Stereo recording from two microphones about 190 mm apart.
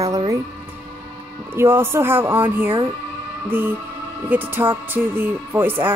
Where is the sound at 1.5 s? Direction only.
10° right (ahead or behind).